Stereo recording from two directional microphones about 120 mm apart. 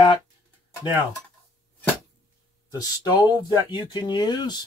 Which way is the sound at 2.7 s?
35° left (ahead or behind).